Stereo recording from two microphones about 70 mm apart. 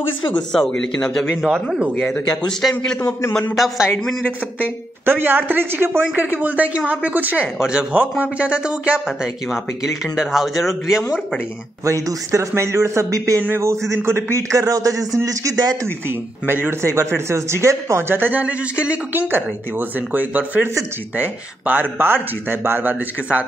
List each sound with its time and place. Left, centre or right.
0.3 s speech: centre
1.3 s speech: centre
2.0 s speech: centre
3.5 s a man's voice: centre
5.0 s speech: right
7.5 s speech: centre
7.9 s a man's voice: right; by 11.1 s centre
11.8 s a man's voice: right
16.4 s speech: right
16.8 s speech: right
18.1 s speech: right